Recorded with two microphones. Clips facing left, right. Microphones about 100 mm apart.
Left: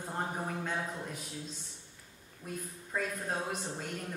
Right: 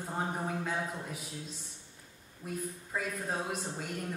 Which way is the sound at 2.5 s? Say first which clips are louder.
Right 2 dB; 5° right (ahead or behind).